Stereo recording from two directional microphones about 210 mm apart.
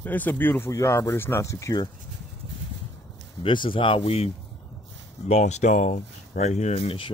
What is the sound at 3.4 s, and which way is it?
Speech, 25° left (ahead or behind).